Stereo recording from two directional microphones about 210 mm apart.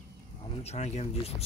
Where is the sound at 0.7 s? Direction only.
30° left (ahead or behind).